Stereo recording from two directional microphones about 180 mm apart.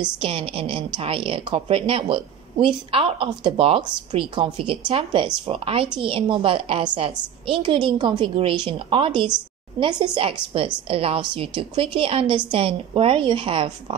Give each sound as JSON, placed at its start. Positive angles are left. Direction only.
{"t": 0.2, "sound": "a woman's voice", "side_deg": -30}